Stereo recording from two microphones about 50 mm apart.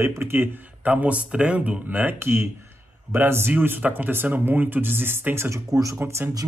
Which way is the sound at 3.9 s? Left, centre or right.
Right.